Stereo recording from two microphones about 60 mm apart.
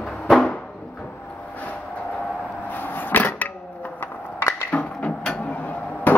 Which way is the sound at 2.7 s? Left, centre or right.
Left.